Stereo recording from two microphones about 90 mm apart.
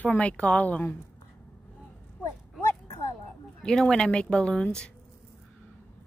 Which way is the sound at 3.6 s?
5° left (ahead or behind).